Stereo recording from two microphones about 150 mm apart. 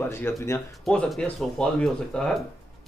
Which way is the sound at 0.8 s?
5° left (ahead or behind).